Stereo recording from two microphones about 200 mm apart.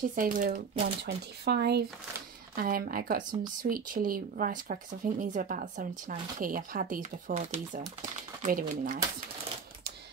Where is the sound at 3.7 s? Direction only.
45° right (ahead or behind).